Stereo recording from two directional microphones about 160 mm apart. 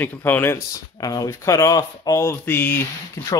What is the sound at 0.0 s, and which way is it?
Speech, 15° left (ahead or behind).